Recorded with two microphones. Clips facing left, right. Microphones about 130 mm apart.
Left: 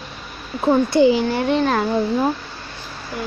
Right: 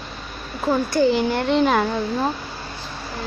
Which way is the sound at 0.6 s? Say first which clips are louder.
Left 4 dB; 25° left (ahead or behind).